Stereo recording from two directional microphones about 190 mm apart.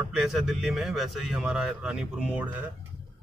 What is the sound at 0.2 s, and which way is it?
A man's voice, centre (ahead or behind).